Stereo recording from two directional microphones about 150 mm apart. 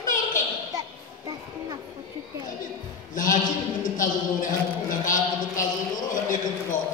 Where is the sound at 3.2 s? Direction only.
60° left (ahead or behind).